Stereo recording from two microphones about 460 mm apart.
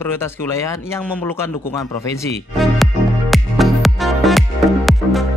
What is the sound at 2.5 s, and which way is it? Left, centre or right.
Music, centre.